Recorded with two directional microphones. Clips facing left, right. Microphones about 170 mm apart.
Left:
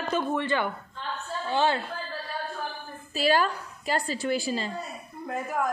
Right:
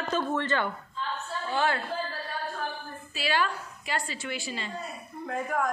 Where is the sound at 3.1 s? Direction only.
40° left (ahead or behind).